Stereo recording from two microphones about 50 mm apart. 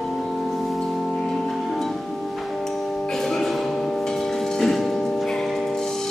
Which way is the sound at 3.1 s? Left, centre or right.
Centre.